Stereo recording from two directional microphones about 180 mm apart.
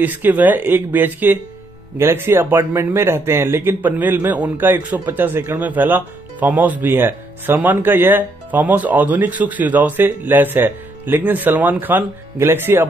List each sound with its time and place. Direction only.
0.0 s a man's voice: 10° right (ahead or behind)